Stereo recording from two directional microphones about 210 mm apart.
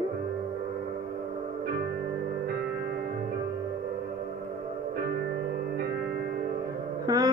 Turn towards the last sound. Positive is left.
turn(degrees=-15)  # may be behind; listen again after turning